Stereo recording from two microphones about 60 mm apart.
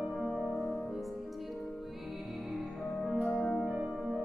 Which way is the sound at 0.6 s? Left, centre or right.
Centre.